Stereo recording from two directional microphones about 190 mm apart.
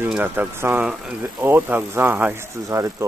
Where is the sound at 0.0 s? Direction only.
10° right (ahead or behind).